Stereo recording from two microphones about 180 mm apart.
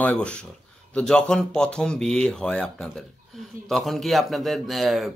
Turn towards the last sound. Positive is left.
turn(degrees=0)  # may be behind; listen again after turning